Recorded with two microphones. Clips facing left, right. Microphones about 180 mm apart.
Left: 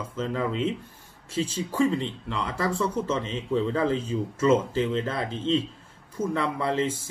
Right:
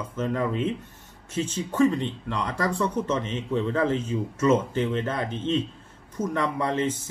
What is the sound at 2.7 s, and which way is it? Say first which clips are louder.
Speech: right 1 dB; 30° left (ahead or behind).